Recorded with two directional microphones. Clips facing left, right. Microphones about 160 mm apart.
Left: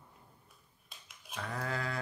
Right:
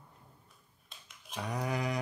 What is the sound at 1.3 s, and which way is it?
Speech, 15° right (ahead or behind).